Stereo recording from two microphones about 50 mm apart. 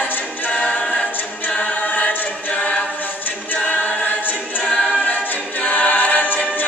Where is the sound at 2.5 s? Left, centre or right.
Left.